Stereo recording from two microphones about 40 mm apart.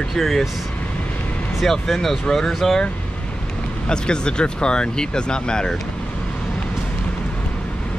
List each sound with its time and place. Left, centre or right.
0.1 s speech: centre
1.6 s speech: centre
3.9 s speech: left